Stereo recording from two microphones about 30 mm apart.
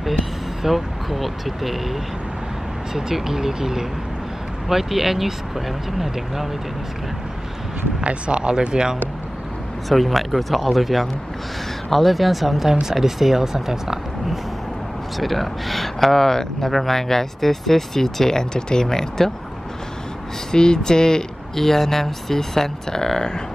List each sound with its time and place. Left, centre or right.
0.0 s speech: centre
2.9 s speech: centre
8.0 s speech: right
9.8 s speech: centre
15.1 s speech: centre
20.5 s speech: left